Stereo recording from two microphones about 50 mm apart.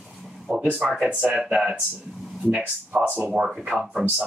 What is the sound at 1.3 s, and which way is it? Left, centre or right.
Speech, centre.